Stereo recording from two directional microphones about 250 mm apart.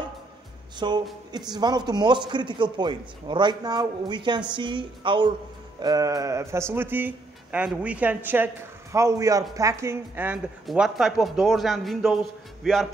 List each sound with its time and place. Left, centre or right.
0.7 s music: centre
1.3 s a man's voice: centre